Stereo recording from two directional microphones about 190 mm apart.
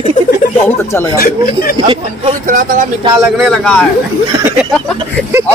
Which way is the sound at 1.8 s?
25° right (ahead or behind).